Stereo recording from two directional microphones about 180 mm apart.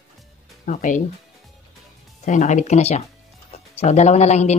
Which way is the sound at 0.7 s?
45° left (ahead or behind).